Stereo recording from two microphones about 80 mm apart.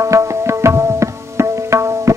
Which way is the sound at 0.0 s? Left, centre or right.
Right.